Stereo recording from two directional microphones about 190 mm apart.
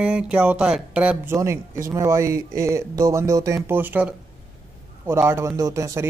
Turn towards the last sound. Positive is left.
turn(degrees=-15)  # may be behind; listen again after turning